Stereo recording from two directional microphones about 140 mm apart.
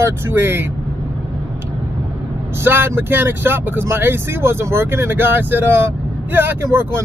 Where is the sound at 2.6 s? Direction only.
15° right (ahead or behind).